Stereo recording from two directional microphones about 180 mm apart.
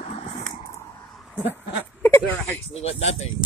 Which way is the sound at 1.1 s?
5° left (ahead or behind).